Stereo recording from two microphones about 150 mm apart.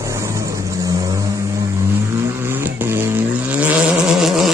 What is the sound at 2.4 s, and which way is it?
Vehicle, 15° right (ahead or behind).